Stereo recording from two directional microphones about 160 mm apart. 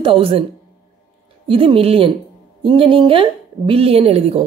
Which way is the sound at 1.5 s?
35° right (ahead or behind).